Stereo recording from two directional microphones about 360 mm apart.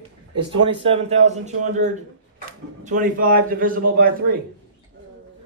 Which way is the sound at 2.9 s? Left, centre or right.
Right.